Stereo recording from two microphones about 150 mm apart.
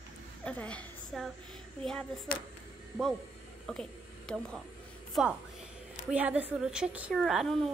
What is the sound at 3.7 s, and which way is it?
Speech, centre (ahead or behind).